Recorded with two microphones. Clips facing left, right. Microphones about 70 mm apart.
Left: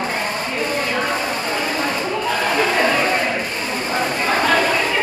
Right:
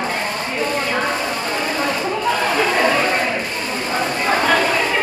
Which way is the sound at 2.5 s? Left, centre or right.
Centre.